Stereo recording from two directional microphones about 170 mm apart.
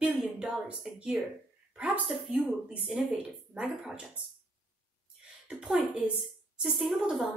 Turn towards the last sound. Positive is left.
turn(degrees=-5)  # may be behind; listen again after turning